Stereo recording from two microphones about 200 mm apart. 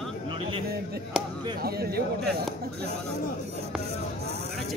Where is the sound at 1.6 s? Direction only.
50° right (ahead or behind).